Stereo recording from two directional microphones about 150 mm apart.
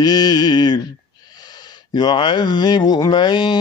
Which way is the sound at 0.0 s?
25° left (ahead or behind).